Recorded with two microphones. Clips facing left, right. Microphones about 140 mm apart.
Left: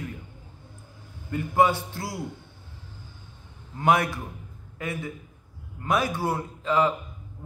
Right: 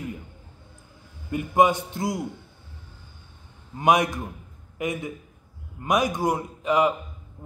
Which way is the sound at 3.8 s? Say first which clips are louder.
Right 2 dB; 15° right (ahead or behind).